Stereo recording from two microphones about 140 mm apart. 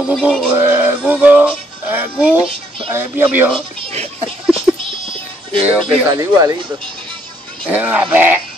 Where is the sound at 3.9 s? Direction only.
45° right (ahead or behind).